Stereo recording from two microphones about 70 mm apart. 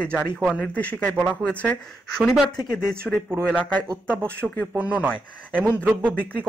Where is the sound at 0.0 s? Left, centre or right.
Centre.